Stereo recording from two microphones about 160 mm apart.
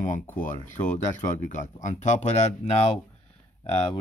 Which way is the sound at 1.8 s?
50° left (ahead or behind).